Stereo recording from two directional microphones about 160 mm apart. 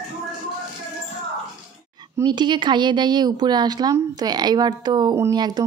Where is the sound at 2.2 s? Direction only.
30° right (ahead or behind).